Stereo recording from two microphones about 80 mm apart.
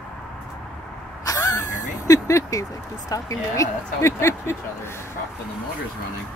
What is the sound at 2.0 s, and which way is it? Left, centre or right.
Speech, left.